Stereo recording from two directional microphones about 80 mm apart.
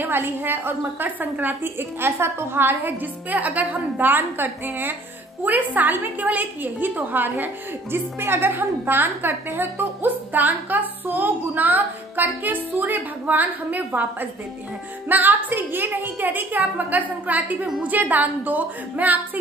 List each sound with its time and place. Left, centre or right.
0.0 s a woman's voice: right